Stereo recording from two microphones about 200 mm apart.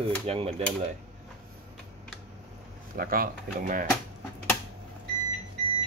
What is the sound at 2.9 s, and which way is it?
Speech, 45° right (ahead or behind).